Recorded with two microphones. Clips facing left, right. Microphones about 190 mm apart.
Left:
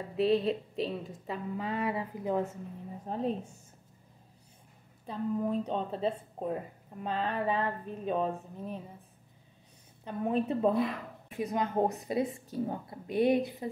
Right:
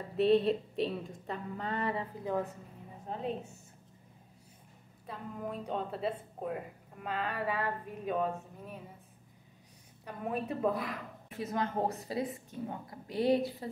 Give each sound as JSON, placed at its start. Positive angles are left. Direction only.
{"t": 0.2, "sound": "a woman's voice", "side_deg": 0}
{"t": 3.1, "sound": "a woman's voice", "side_deg": 40}
{"t": 5.0, "sound": "a woman's voice", "side_deg": 30}
{"t": 10.0, "sound": "a woman's voice", "side_deg": 25}
{"t": 13.0, "sound": "a woman's voice", "side_deg": 20}